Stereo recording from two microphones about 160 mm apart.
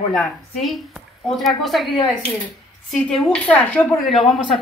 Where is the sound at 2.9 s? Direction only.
Centre (ahead or behind).